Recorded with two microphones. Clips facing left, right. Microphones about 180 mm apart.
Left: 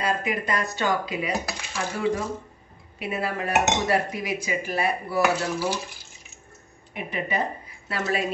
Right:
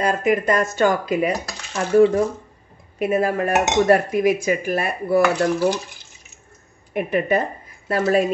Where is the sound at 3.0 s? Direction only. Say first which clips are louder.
Right 9 dB; 45° right (ahead or behind).